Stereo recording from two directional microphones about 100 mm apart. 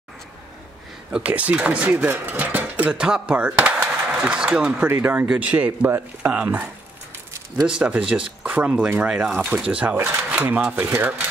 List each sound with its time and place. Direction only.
1.1 s speech: 15° right (ahead or behind)
4.8 s speech: 25° right (ahead or behind)